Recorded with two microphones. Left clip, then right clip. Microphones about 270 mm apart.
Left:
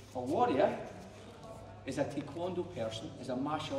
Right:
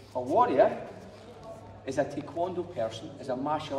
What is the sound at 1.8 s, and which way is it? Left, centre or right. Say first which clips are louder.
A man's voice: right 6 dB; centre.